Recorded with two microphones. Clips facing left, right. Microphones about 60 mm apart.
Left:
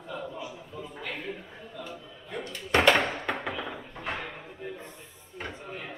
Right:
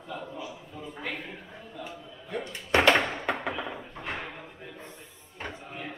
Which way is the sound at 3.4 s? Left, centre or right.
Centre.